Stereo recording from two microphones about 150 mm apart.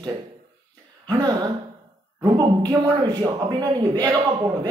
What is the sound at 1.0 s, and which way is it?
Speech, 25° right (ahead or behind).